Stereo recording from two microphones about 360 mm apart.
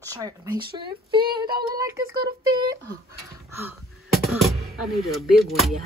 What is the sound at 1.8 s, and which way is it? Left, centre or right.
Speech, centre.